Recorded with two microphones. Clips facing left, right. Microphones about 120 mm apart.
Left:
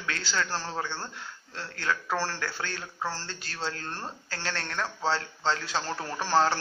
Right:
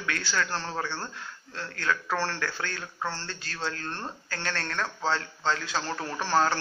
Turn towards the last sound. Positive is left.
turn(degrees=10)  # may be behind; listen again after turning